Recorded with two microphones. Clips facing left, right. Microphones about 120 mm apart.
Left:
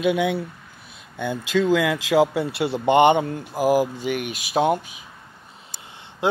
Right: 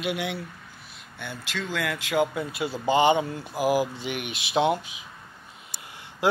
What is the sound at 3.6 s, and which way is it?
Speech, 45° left (ahead or behind).